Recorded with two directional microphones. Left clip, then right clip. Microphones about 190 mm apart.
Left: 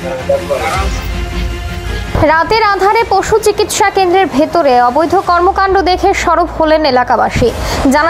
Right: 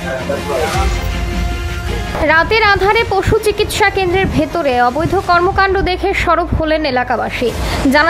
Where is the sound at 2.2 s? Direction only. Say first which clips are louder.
Left 1 dB; centre (ahead or behind).